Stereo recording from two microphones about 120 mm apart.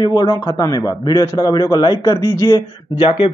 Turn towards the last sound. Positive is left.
turn(degrees=40)  # may be behind; listen again after turning